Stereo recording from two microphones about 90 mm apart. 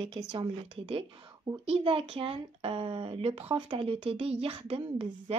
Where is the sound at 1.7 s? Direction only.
90° right.